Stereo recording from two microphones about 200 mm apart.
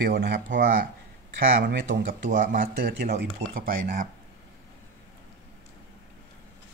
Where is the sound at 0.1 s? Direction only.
60° right (ahead or behind).